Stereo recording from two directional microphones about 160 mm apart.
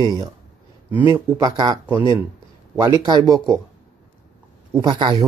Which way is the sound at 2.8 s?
25° right (ahead or behind).